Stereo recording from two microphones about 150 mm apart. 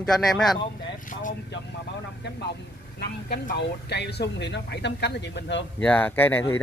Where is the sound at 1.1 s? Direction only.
60° left (ahead or behind).